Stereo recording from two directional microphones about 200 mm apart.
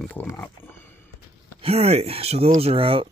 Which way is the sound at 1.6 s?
30° right (ahead or behind).